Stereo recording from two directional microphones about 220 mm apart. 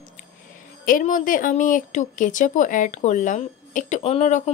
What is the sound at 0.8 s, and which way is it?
A woman's voice, 40° left (ahead or behind).